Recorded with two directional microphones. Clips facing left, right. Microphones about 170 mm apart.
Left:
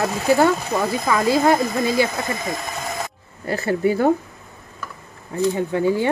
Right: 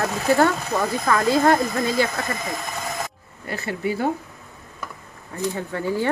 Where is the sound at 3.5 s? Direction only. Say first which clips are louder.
Left 6 dB; 45° left (ahead or behind).